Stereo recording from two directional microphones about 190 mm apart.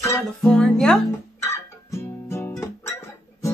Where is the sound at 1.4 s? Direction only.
15° left (ahead or behind).